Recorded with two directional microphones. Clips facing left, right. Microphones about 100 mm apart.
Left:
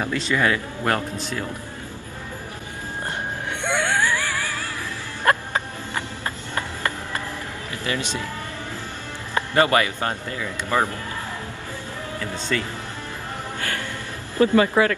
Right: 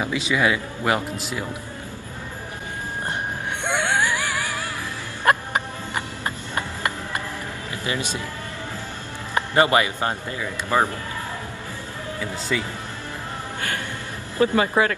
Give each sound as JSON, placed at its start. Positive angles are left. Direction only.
{"t": 0.0, "sound": "speech", "side_deg": -5}
{"t": 3.6, "sound": "music", "side_deg": -20}
{"t": 9.3, "sound": "speech", "side_deg": -20}
{"t": 12.2, "sound": "speech", "side_deg": -10}
{"t": 14.4, "sound": "speech", "side_deg": -25}